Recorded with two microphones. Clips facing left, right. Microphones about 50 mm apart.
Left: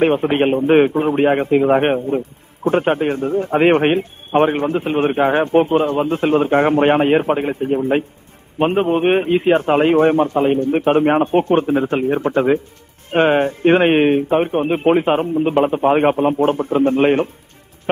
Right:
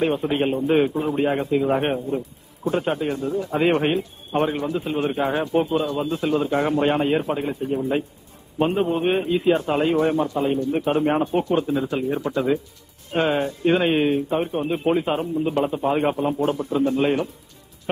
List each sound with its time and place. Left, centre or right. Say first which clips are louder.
0.0 s a man's voice: left 6 dB; left